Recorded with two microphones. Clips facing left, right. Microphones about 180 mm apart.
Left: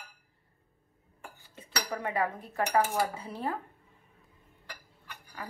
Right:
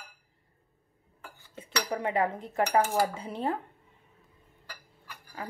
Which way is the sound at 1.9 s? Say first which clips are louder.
Right 3 dB; 20° right (ahead or behind).